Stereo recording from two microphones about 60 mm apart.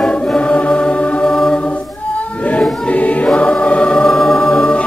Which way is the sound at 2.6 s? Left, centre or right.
Left.